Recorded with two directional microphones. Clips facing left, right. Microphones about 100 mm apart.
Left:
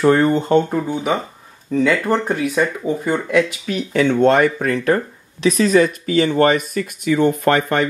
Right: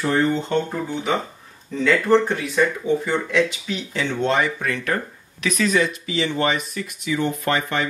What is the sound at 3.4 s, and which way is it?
Speech, 50° left (ahead or behind).